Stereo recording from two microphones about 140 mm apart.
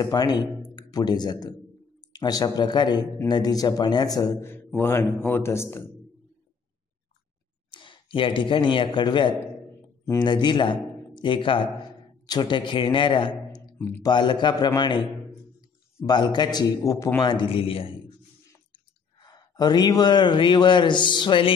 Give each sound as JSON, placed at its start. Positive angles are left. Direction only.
{"t": 0.0, "sound": "a man's voice", "side_deg": 25}
{"t": 7.7, "sound": "a man's voice", "side_deg": 35}
{"t": 13.7, "sound": "speech", "side_deg": 15}
{"t": 14.0, "sound": "a man's voice", "side_deg": 35}